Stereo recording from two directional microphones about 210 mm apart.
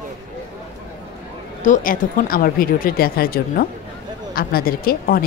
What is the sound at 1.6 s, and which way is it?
Speech, 40° left (ahead or behind).